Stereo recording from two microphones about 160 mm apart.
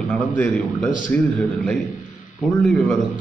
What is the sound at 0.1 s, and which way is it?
Speech, 10° left (ahead or behind).